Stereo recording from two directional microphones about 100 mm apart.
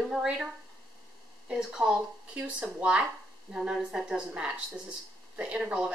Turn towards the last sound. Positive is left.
turn(degrees=-10)  # may be behind; listen again after turning